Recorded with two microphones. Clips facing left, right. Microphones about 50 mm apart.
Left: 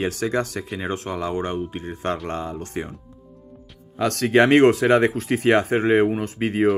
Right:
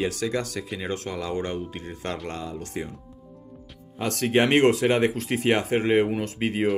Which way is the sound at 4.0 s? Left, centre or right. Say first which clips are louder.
Left 5 dB; left.